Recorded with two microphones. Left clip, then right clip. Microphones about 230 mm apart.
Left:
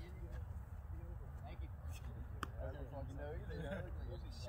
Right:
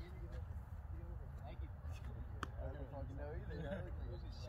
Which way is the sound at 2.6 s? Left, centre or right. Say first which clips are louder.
Left 1 dB; left.